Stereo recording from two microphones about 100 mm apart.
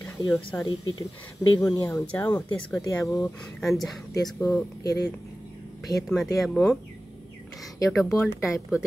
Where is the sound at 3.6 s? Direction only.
Centre (ahead or behind).